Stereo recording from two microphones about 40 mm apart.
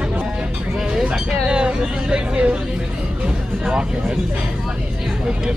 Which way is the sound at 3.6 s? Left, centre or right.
Centre.